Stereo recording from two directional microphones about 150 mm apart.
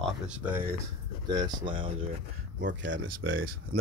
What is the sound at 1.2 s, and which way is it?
Speech, 30° right (ahead or behind).